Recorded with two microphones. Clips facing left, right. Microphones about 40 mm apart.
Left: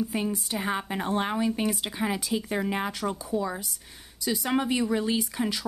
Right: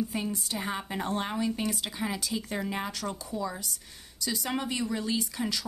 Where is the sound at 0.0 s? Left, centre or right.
Centre.